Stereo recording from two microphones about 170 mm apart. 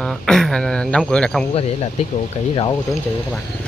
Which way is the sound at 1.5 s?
35° left (ahead or behind).